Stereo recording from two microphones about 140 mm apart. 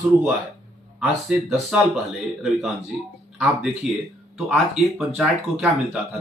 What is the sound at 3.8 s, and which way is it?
Speech, 5° right (ahead or behind).